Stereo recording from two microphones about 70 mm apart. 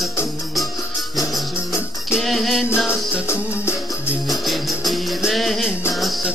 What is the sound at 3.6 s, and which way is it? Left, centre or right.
Music, left.